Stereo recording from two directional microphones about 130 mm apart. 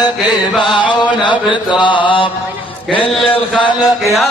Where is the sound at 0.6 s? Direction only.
35° left (ahead or behind).